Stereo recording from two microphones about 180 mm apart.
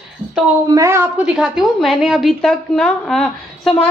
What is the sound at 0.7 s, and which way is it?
A woman's voice, 15° right (ahead or behind).